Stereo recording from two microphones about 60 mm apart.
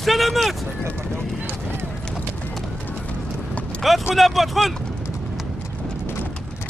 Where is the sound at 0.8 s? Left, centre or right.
Right.